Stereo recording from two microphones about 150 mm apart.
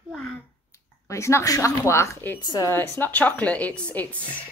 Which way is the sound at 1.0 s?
20° left (ahead or behind).